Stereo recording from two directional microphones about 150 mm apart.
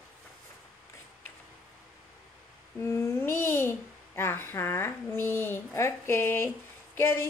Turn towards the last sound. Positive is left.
turn(degrees=15)  # may be behind; listen again after turning